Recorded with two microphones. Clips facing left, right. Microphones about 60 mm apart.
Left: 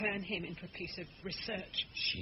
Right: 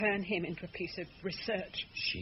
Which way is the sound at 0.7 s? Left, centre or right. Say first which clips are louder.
Right 5 dB; right.